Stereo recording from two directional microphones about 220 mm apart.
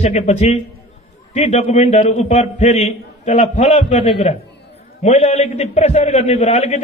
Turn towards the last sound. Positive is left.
turn(degrees=30)  # may be behind; listen again after turning